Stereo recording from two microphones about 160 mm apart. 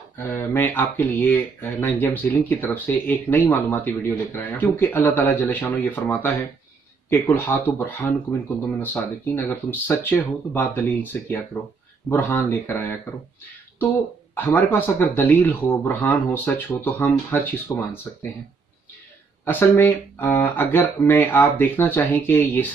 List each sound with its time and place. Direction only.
0.3 s speech: 15° left (ahead or behind)
14.3 s speech: 15° left (ahead or behind)
19.4 s speech: 15° left (ahead or behind)